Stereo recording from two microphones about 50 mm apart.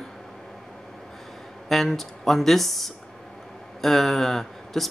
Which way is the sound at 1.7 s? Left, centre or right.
Centre.